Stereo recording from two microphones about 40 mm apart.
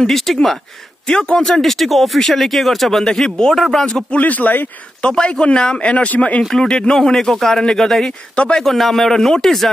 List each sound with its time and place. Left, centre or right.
0.1 s speech: centre
1.0 s speech: centre
1.6 s speech: centre
4.1 s speech: left
5.0 s speech: left
6.5 s speech: centre
8.4 s speech: left
8.7 s speech: centre